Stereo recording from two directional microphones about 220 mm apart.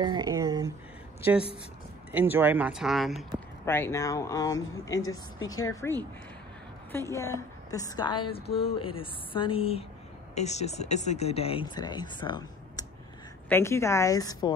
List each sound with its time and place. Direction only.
0.0 s a sound: 20° right (ahead or behind)
2.1 s speech: 10° right (ahead or behind)
3.6 s a woman's voice: 10° left (ahead or behind)